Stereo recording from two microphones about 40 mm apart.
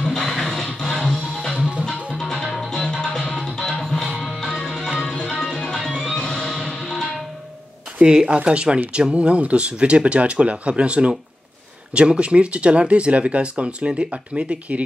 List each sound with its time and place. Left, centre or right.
0.0 s music: centre
2.7 s music: centre
8.0 s speech: right